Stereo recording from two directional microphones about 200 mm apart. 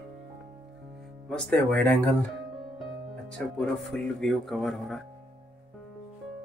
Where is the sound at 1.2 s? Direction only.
5° left (ahead or behind).